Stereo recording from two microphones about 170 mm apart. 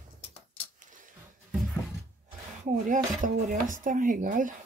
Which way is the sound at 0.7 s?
50° right (ahead or behind).